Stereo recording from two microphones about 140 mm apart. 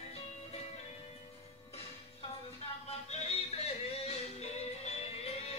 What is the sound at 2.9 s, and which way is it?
Yodeling, 45° left (ahead or behind).